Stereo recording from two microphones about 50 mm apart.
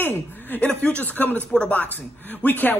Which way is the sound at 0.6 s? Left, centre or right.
Centre.